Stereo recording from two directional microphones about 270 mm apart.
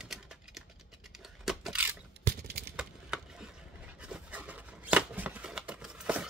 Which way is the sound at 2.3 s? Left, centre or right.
Right.